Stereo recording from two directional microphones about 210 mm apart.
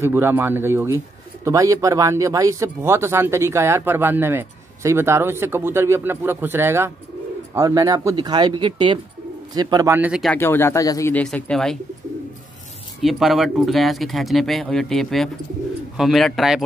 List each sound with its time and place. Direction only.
0.0 s speech: 10° right (ahead or behind)
10.3 s speech: 10° left (ahead or behind)
13.0 s speech: centre (ahead or behind)